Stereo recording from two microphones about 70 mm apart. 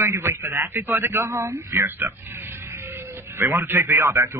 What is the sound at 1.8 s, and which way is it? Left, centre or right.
Speech, right.